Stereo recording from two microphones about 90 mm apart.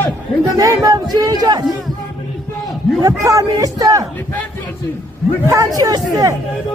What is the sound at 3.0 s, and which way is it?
A man's voice, 40° right (ahead or behind).